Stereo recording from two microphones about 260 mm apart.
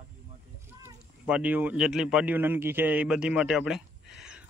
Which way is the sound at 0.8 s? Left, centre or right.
Centre.